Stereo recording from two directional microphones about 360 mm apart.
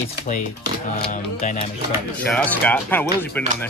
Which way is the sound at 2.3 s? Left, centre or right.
Centre.